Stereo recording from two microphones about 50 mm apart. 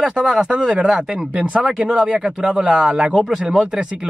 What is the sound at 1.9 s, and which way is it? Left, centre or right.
Speech, centre.